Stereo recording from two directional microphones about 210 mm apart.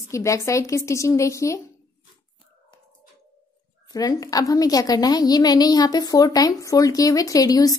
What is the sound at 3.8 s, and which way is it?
A woman's voice, 15° left (ahead or behind).